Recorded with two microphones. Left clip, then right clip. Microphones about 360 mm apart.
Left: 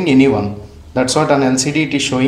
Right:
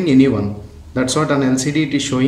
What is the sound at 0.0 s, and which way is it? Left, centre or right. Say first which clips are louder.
A man's voice: left 2 dB; centre.